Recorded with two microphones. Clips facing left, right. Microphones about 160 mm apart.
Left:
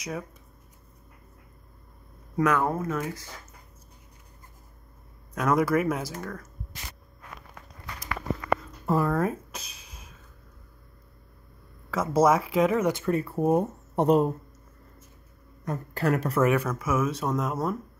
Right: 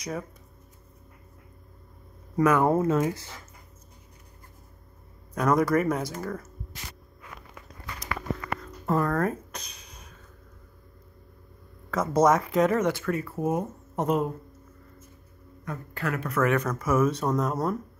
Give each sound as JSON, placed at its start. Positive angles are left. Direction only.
{"t": 2.3, "sound": "speech", "side_deg": -5}
{"t": 2.6, "sound": "speech", "side_deg": -25}
{"t": 5.3, "sound": "speech", "side_deg": 0}
{"t": 8.8, "sound": "a sound", "side_deg": 10}
{"t": 11.9, "sound": "speech", "side_deg": 5}
{"t": 12.9, "sound": "speech", "side_deg": 25}
{"t": 15.6, "sound": "speech", "side_deg": 40}
{"t": 16.4, "sound": "speech", "side_deg": 5}